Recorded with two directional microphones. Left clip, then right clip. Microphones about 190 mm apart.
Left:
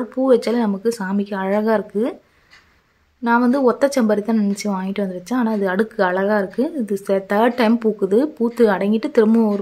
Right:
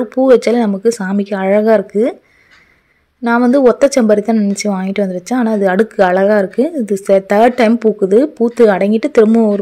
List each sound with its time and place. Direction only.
0.1 s a woman's voice: 25° right (ahead or behind)
3.3 s a woman's voice: 25° right (ahead or behind)